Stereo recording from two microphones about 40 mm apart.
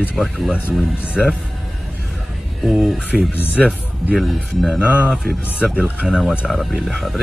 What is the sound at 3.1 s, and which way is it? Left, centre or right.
Speech, right.